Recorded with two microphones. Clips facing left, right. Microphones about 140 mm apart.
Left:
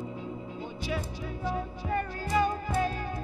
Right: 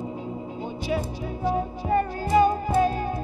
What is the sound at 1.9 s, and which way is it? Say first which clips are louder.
Music: right 8 dB; 25° right (ahead or behind).